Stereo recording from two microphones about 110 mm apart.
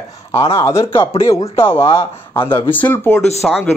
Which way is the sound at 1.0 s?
55° left (ahead or behind).